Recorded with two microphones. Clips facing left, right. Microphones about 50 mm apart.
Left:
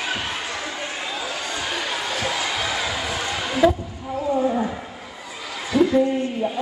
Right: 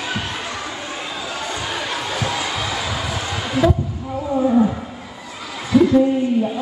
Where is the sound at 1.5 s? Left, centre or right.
Centre.